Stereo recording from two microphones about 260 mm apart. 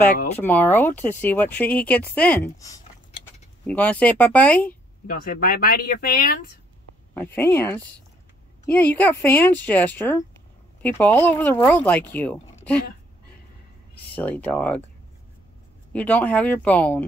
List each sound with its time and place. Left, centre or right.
0.4 s speech: centre
5.0 s speech: left
7.2 s speech: centre
14.1 s speech: centre
15.9 s speech: centre